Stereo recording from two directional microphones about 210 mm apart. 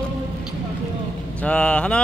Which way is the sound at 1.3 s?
5° left (ahead or behind).